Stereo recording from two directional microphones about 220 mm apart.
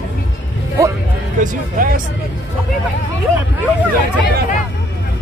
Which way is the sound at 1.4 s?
40° right (ahead or behind).